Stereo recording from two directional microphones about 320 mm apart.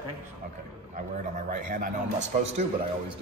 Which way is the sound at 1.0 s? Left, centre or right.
Right.